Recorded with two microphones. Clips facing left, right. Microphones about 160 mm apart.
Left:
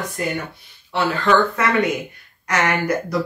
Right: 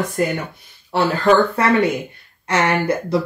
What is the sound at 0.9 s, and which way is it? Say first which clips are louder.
Speech: right 3 dB; 35° right (ahead or behind).